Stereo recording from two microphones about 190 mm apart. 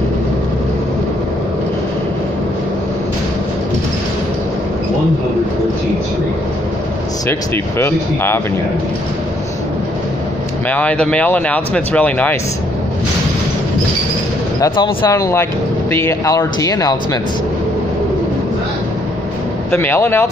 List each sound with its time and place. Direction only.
7.2 s speech: 10° left (ahead or behind)
10.7 s speech: 10° left (ahead or behind)
14.6 s speech: 20° left (ahead or behind)
19.7 s speech: 10° left (ahead or behind)